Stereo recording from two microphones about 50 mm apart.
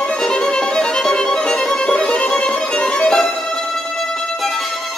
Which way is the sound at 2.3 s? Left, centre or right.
Left.